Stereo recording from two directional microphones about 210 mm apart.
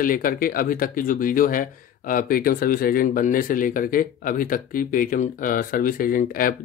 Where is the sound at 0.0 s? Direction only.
40° left (ahead or behind).